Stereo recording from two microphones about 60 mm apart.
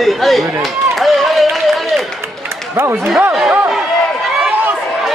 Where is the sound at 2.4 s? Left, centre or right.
Right.